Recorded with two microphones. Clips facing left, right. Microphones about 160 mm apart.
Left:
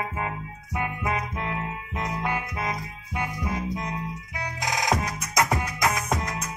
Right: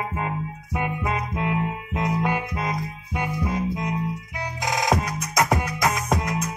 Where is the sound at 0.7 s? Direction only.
25° right (ahead or behind).